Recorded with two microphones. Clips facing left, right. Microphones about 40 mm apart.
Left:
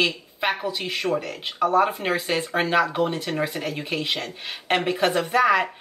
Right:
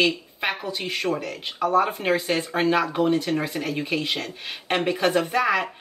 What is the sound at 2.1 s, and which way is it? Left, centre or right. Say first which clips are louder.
Speech: right 1 dB; left.